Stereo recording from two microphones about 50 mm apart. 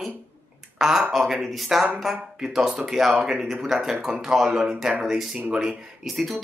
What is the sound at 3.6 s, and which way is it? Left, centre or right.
Speech, centre.